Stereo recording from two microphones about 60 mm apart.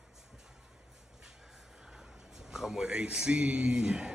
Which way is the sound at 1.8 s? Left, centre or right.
Centre.